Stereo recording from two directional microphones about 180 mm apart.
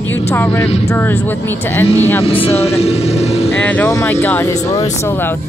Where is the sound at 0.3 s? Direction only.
15° left (ahead or behind).